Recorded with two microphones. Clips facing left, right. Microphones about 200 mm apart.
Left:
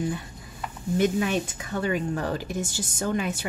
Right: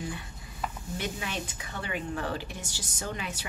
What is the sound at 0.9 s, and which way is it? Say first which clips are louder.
Speech: left 14 dB; 45° left (ahead or behind).